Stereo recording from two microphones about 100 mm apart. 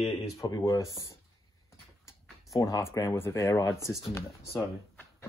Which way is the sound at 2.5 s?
35° left (ahead or behind).